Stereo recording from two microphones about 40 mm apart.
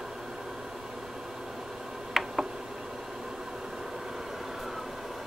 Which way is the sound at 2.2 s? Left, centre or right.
Centre.